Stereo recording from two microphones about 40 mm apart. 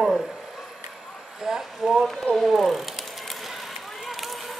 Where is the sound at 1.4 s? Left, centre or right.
Centre.